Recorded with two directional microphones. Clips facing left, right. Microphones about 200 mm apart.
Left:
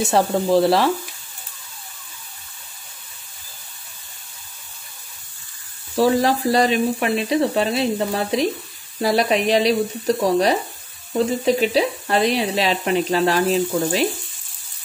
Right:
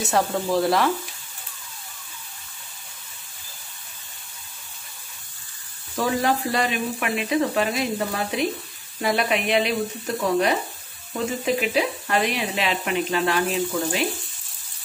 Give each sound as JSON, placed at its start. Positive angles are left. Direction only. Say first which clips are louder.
{"t": 0.0, "sound": "speech", "louder": "left 4 dB", "side_deg": 30}
{"t": 5.9, "sound": "speech", "louder": "left 6 dB", "side_deg": 35}